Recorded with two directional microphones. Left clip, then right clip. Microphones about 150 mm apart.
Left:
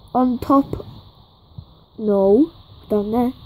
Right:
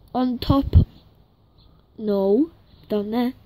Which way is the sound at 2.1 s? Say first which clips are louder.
Left 5 dB; 30° right (ahead or behind).